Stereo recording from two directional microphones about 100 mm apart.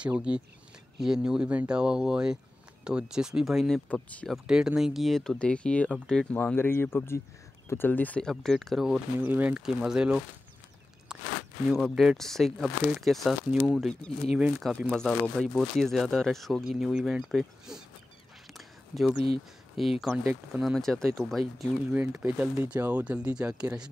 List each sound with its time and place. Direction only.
0.0 s speech: 10° right (ahead or behind); by 6.2 s 5° left (ahead or behind)
6.3 s speech: 20° left (ahead or behind)
8.3 s speech: centre (ahead or behind)
9.2 s speech: 15° right (ahead or behind)
11.7 s speech: centre (ahead or behind)
18.5 s whispering: centre (ahead or behind)
19.8 s speech: centre (ahead or behind)
21.9 s speech: 20° right (ahead or behind)